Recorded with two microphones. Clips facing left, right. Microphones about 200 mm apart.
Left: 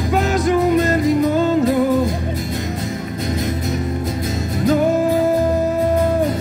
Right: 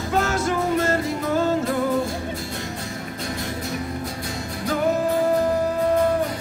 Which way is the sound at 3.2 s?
20° left (ahead or behind).